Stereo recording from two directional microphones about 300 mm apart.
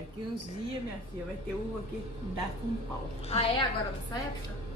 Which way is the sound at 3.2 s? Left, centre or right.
Centre.